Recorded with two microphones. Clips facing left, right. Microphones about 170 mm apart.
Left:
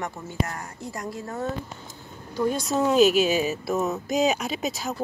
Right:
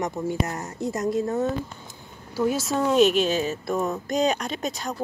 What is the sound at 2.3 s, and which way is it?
Speech, 5° right (ahead or behind).